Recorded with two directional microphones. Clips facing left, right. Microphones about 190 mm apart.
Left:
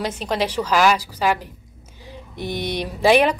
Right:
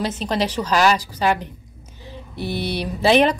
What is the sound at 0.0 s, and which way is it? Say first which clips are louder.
A woman's voice: right 1 dB; 10° left (ahead or behind).